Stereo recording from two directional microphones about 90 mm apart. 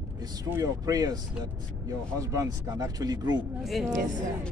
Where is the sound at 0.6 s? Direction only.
40° right (ahead or behind).